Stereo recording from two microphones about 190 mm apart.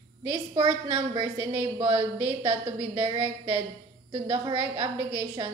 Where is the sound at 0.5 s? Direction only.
25° right (ahead or behind).